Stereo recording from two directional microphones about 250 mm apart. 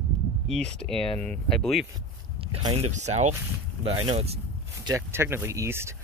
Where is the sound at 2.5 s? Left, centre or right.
Centre.